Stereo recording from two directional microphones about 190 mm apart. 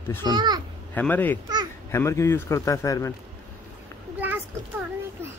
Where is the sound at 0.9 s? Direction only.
10° left (ahead or behind).